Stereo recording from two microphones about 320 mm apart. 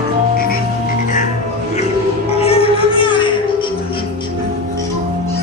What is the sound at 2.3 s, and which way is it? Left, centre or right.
Music, centre.